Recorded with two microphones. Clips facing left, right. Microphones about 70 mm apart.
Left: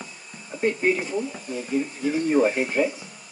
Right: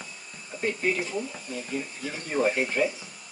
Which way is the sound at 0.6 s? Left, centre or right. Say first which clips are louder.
Left 5 dB; left.